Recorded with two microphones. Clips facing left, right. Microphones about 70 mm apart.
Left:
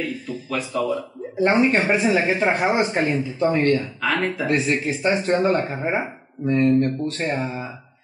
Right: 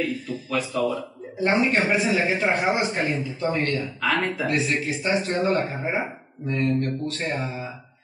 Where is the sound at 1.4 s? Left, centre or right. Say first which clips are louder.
Left 3 dB; left.